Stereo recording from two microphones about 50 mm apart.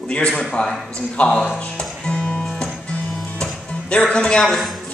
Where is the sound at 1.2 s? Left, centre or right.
Centre.